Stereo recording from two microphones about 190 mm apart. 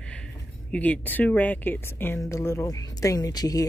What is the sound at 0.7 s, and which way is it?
A woman's voice, 10° left (ahead or behind).